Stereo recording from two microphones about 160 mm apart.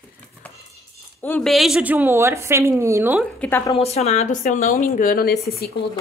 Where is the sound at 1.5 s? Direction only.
Centre (ahead or behind).